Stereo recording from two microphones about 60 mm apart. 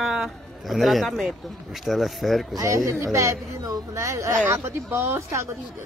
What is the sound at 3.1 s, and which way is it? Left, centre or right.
Speech, right.